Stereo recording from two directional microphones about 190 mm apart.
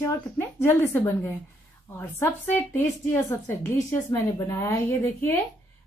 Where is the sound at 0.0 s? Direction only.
15° left (ahead or behind).